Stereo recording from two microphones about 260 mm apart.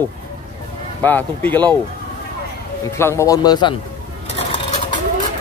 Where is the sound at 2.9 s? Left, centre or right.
Centre.